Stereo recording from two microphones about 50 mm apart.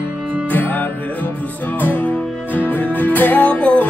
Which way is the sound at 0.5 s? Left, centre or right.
Left.